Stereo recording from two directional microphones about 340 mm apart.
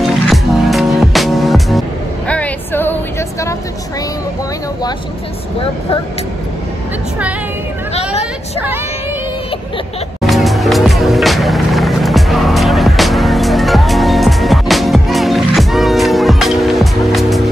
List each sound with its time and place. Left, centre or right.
0.0 s music: centre
7.9 s vehicle: centre
10.2 s music: centre